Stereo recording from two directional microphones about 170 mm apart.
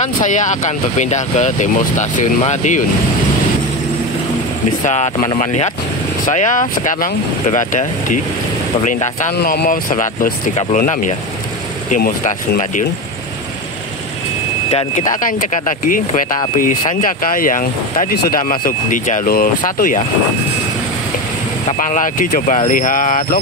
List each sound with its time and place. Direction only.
0.0 s speech: 45° left (ahead or behind)
4.8 s speech: 45° left (ahead or behind)
9.3 s speech: 75° left (ahead or behind)
9.7 s speech: 50° left (ahead or behind)
14.7 s speech: 35° left (ahead or behind)
15.0 s speech: 50° left (ahead or behind)
21.6 s speech: 45° left (ahead or behind)